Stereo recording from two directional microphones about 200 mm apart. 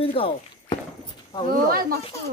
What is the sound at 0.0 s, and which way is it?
Speech, 30° left (ahead or behind).